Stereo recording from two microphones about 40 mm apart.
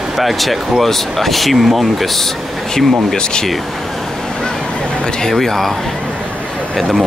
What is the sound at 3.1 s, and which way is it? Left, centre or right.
Speech, centre.